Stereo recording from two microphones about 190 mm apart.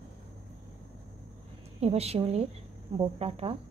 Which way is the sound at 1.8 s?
30° right (ahead or behind).